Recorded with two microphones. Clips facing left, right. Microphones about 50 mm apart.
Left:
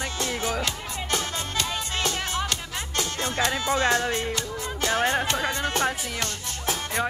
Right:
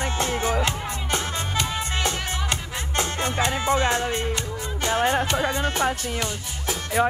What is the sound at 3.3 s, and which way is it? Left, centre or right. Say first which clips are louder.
Speech: right 2 dB; right.